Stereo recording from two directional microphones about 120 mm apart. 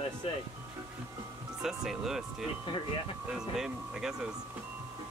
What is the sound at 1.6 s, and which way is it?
Speech, 5° right (ahead or behind).